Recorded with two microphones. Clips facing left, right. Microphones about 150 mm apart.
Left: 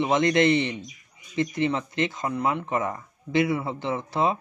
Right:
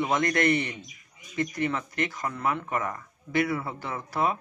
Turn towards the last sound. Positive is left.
turn(degrees=25)  # may be behind; listen again after turning